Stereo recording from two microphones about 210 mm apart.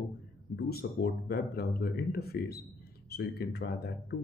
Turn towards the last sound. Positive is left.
turn(degrees=50)  # may be behind; listen again after turning